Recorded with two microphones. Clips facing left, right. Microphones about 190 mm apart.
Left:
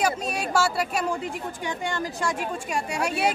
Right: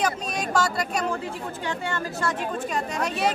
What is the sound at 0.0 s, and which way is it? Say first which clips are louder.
Speech: left 1 dB; 10° left (ahead or behind).